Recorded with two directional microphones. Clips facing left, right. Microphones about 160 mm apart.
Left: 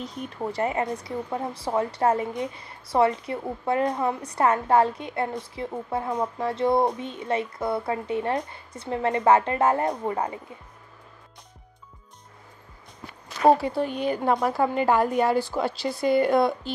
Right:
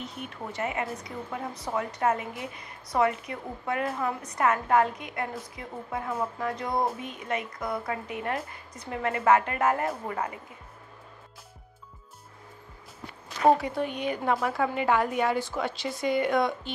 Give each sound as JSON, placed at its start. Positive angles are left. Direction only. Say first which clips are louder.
{"t": 0.3, "sound": "a woman's voice", "louder": "left 7 dB", "side_deg": 35}
{"t": 13.5, "sound": "a woman's voice", "louder": "left 3 dB", "side_deg": 30}